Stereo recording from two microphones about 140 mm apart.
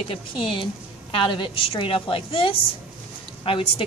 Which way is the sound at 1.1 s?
40° left (ahead or behind).